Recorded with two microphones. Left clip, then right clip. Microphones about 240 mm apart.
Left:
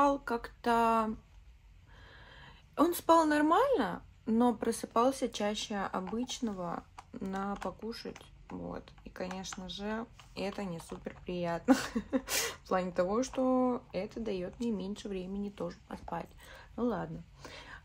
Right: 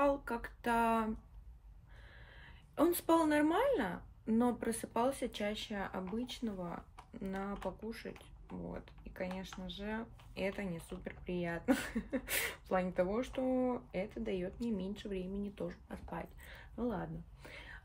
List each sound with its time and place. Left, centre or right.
0.0 s speech: centre
2.3 s speech: centre